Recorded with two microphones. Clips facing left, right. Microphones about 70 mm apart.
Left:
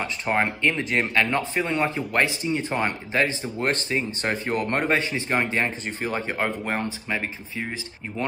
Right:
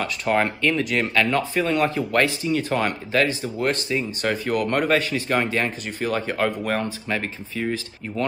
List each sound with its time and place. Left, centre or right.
0.0 s speech: left
3.5 s speech: left